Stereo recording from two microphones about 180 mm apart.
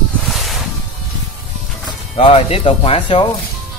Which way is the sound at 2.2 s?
30° left (ahead or behind).